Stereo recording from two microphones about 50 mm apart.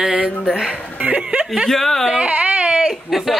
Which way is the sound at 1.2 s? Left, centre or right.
Centre.